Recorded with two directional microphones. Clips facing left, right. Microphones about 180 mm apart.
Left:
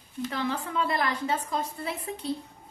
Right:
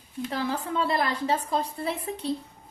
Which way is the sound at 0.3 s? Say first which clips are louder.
Right 2 dB; 30° right (ahead or behind).